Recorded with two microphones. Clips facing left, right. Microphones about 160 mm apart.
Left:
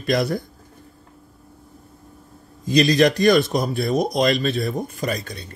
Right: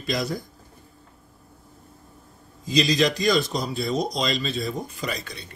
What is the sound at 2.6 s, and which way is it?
Speech, 55° left (ahead or behind).